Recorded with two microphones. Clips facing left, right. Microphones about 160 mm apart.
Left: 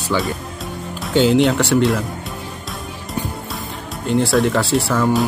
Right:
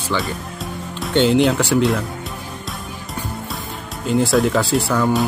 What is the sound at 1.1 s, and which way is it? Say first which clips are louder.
Speech: left 1 dB; centre (ahead or behind).